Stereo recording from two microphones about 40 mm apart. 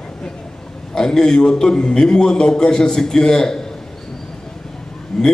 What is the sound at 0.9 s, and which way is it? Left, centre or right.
Speech, centre.